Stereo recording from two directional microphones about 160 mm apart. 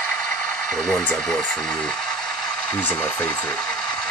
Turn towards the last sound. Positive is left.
turn(degrees=10)  # may be behind; listen again after turning